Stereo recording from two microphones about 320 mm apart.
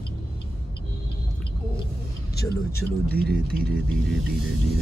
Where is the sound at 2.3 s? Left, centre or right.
Left.